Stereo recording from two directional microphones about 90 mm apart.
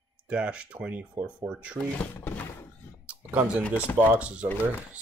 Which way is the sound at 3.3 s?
15° right (ahead or behind).